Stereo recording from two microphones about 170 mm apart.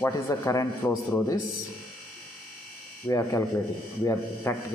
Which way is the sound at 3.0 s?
20° left (ahead or behind).